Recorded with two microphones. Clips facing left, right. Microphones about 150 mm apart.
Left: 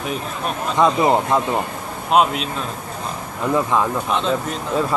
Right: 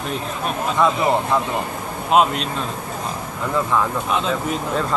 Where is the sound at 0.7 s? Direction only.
20° left (ahead or behind).